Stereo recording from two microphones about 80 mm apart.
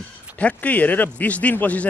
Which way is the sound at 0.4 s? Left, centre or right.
Centre.